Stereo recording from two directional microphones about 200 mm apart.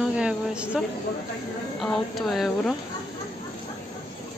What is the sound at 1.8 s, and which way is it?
Speech, centre (ahead or behind).